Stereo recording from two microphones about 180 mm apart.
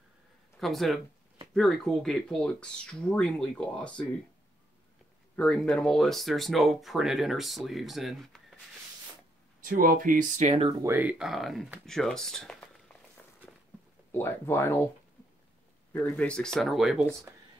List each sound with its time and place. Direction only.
0.6 s speech: centre (ahead or behind)
5.3 s speech: 5° left (ahead or behind)
9.7 s speech: 50° right (ahead or behind)
10.8 s speech: 10° right (ahead or behind); by 12.9 s 5° left (ahead or behind)
13.2 s walk: 10° left (ahead or behind)
14.1 s speech: 15° left (ahead or behind)
15.9 s speech: 10° left (ahead or behind)